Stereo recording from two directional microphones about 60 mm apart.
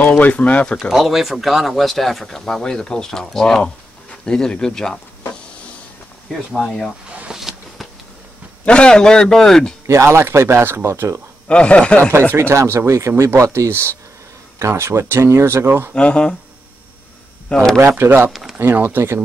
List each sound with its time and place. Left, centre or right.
0.1 s speech: left
0.7 s speech: centre
6.6 s a man's voice: centre
7.2 s a sound: centre
8.6 s a man's voice: centre
9.8 s speech: right
11.4 s speech: centre
12.1 s speech: right
13.7 s speech: right
15.9 s a man's voice: centre
17.7 s speech: right
18.3 s speech: centre
18.6 s speech: right